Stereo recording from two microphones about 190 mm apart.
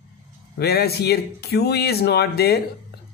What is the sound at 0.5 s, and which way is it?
Speech, 55° left (ahead or behind).